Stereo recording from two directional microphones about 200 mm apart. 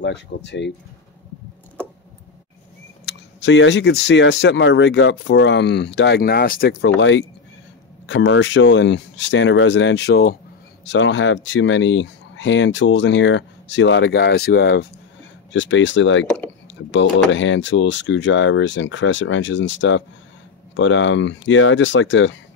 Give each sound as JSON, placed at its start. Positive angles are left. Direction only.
{"t": 0.0, "sound": "speech", "side_deg": 60}
{"t": 3.1, "sound": "speech", "side_deg": 60}
{"t": 10.9, "sound": "speech", "side_deg": 65}
{"t": 15.5, "sound": "speech", "side_deg": 70}